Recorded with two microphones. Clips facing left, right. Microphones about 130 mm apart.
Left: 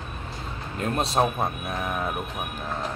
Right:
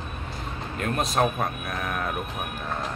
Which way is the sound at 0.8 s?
30° left (ahead or behind).